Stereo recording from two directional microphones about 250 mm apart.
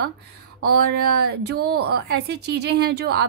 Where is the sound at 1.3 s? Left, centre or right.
Right.